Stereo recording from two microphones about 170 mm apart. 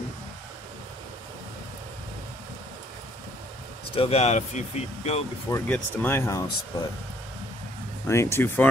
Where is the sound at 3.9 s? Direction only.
35° left (ahead or behind).